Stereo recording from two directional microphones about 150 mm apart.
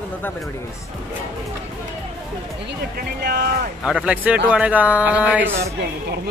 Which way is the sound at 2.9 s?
90° right.